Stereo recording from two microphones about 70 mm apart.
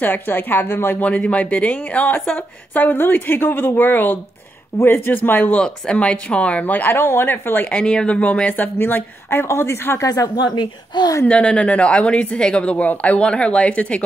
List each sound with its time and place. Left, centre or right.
0.0 s a woman's voice: left
1.0 s a woman's voice: centre
5.5 s speech: centre
6.6 s speech: left
7.7 s speech: centre
8.7 s speech: left
10.0 s speech: left
11.2 s speech: centre